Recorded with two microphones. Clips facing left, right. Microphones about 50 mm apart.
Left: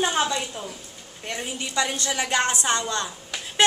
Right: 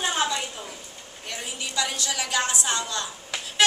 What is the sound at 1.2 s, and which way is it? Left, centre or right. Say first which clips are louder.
A woman's voice: left 3 dB; left.